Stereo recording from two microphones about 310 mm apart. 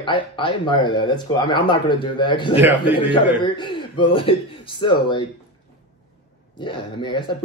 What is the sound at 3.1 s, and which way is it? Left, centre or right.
Speech, centre.